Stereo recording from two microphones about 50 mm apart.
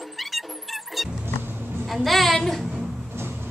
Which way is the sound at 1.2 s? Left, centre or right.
Right.